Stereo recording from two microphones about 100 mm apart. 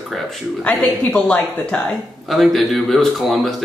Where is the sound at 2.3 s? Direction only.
Centre (ahead or behind).